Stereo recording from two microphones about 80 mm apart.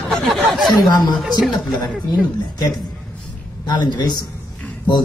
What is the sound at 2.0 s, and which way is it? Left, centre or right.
Speech, left.